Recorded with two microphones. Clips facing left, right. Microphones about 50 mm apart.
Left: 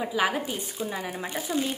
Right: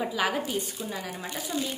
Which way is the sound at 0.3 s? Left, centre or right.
Left.